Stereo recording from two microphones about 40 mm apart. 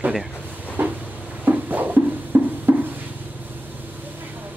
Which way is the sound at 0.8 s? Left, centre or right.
Right.